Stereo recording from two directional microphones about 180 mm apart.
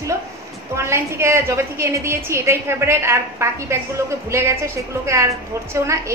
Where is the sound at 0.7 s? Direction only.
15° right (ahead or behind).